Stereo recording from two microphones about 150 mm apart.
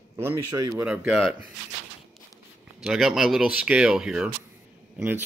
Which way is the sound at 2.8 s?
5° right (ahead or behind).